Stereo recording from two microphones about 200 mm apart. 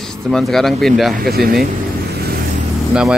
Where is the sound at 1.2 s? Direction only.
50° right (ahead or behind).